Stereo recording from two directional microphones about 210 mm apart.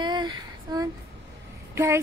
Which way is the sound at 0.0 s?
20° right (ahead or behind).